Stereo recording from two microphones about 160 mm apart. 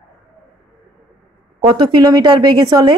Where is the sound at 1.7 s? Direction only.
25° right (ahead or behind).